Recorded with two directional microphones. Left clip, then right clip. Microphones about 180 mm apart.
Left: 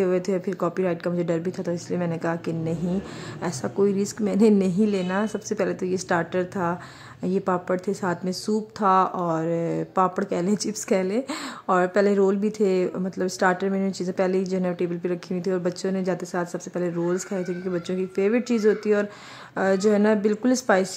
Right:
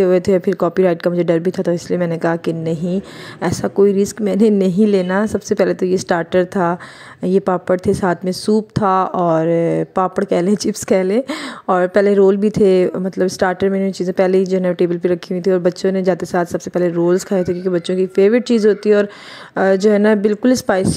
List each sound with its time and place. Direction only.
0.0 s speech: 30° right (ahead or behind)